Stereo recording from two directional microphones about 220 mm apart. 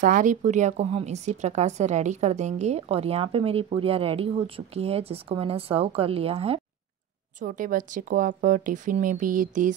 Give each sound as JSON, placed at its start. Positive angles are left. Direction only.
{"t": 0.0, "sound": "a woman's voice", "side_deg": -35}
{"t": 7.3, "sound": "a woman's voice", "side_deg": -35}